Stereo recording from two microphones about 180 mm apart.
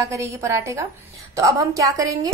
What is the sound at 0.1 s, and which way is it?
A woman's voice, 15° right (ahead or behind).